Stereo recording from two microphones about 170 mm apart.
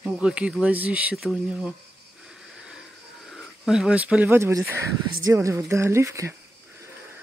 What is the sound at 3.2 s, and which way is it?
Speech, centre (ahead or behind).